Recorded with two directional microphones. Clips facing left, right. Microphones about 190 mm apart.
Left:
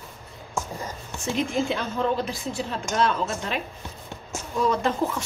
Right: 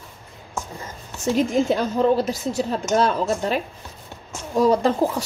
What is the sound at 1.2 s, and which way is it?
Speech, 40° right (ahead or behind).